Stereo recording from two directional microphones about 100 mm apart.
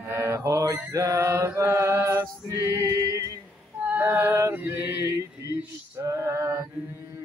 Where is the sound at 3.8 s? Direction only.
20° right (ahead or behind).